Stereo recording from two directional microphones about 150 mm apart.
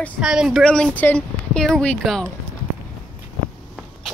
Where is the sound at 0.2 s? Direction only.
5° right (ahead or behind).